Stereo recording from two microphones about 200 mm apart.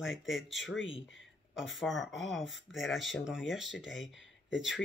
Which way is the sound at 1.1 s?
70° left (ahead or behind).